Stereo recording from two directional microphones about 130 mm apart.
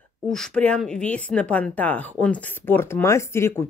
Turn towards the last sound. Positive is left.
turn(degrees=20)  # may be behind; listen again after turning